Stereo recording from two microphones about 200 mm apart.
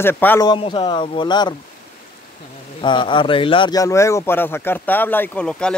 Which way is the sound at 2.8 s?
25° left (ahead or behind).